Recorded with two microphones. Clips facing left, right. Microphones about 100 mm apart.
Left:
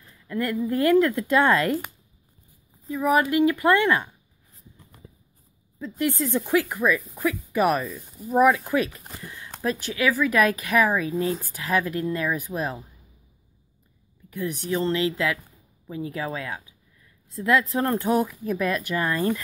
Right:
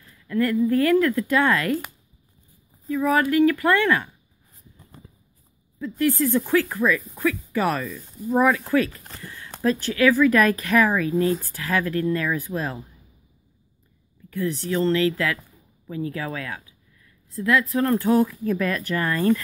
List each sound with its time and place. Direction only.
0.0 s speech: 20° left (ahead or behind)
2.9 s speech: 20° left (ahead or behind)
5.8 s speech: 20° left (ahead or behind)
11.4 s speech: 15° left (ahead or behind)
14.3 s speech: 15° left (ahead or behind)